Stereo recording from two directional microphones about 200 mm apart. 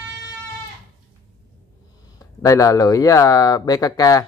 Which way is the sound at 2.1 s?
15° left (ahead or behind).